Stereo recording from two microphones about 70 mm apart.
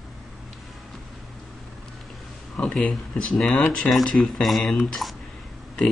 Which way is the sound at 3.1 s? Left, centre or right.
Centre.